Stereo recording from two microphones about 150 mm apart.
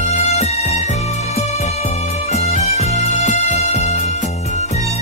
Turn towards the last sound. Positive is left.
turn(degrees=50)  # may be behind; listen again after turning